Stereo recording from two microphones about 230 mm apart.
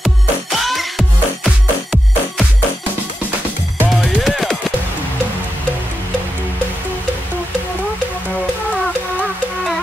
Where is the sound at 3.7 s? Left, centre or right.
Centre.